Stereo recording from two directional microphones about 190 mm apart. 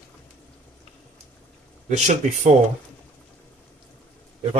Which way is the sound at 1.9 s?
40° right (ahead or behind).